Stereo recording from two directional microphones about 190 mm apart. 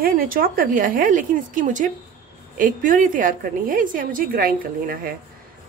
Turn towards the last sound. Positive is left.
turn(degrees=-50)  # may be behind; listen again after turning